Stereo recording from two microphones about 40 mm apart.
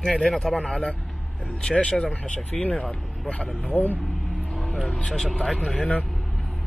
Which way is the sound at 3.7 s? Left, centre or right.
Left.